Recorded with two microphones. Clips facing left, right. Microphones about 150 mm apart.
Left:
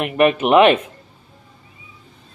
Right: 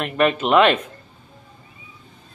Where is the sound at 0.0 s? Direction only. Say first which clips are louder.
Left 4 dB; 15° left (ahead or behind).